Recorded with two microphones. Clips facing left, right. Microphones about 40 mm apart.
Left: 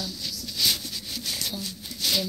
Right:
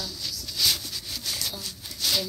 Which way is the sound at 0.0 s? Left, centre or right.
Left.